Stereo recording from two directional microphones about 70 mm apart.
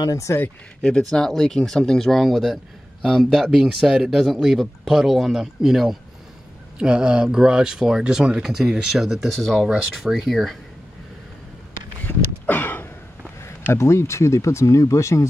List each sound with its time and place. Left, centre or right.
0.0 s speech: left
0.8 s speech: centre
9.7 s speech: centre
12.0 s a sound: left
13.7 s speech: left